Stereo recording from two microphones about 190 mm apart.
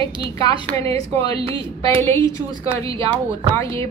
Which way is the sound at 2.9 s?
25° right (ahead or behind).